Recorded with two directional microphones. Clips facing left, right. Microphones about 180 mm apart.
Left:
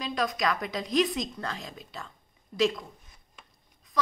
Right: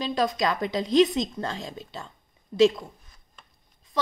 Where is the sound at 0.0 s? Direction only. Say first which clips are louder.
Right 4 dB; 25° right (ahead or behind).